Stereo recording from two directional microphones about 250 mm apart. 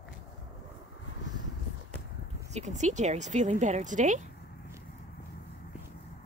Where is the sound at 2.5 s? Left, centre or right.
Right.